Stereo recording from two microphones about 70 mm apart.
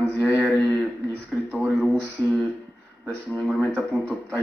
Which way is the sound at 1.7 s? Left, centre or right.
Centre.